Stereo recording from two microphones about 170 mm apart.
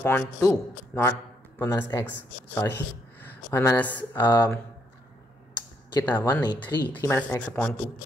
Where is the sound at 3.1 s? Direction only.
10° left (ahead or behind).